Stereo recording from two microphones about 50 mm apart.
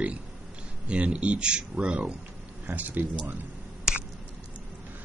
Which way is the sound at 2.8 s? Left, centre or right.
Right.